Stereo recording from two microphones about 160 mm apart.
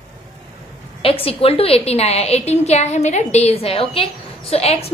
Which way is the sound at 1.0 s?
35° left (ahead or behind).